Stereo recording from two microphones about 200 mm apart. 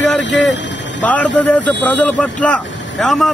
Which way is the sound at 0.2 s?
65° left (ahead or behind).